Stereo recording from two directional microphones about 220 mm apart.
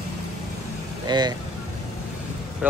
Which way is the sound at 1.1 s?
20° right (ahead or behind).